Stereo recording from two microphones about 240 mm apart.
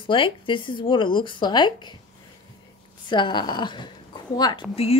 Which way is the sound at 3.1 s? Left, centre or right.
Centre.